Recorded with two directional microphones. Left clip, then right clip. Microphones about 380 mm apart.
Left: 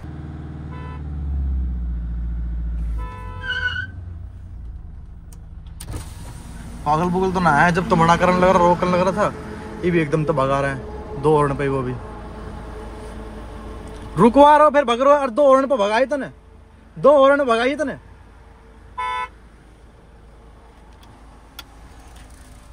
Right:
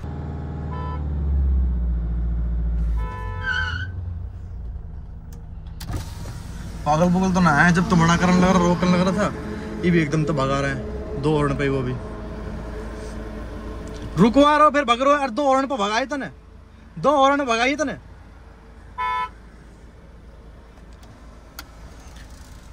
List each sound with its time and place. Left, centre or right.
6.8 s a man's voice: centre
13.9 s a man's voice: centre